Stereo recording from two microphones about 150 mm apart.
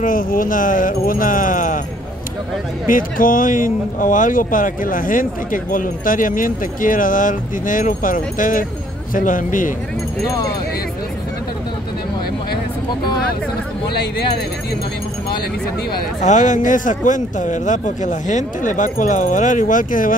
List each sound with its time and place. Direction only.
0.0 s speech: 70° left (ahead or behind)
2.9 s speech: 65° left (ahead or behind)
10.2 s speech: 20° left (ahead or behind)
16.2 s speech: 55° left (ahead or behind)